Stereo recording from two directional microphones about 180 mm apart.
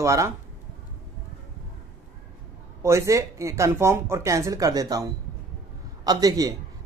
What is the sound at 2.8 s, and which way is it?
A man's voice, 15° right (ahead or behind).